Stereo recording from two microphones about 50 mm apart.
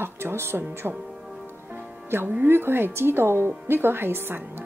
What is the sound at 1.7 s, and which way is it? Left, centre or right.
Speech, right.